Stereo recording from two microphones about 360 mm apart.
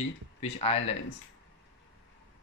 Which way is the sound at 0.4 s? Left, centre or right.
Centre.